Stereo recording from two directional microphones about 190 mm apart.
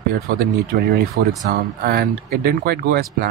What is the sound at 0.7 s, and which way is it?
Speech, 50° right (ahead or behind).